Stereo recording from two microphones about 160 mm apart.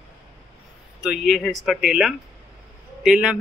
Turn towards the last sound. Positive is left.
turn(degrees=-5)  # may be behind; listen again after turning